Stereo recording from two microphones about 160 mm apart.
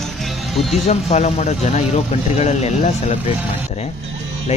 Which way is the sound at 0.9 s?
40° left (ahead or behind).